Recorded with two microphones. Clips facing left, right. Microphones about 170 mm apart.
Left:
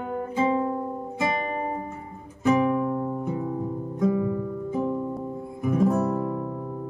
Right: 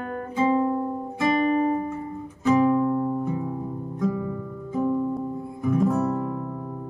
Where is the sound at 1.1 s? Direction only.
25° left (ahead or behind).